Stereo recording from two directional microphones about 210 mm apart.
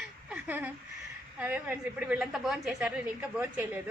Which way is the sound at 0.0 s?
5° right (ahead or behind).